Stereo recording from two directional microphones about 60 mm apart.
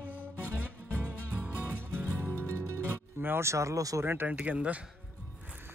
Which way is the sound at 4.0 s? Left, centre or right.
Right.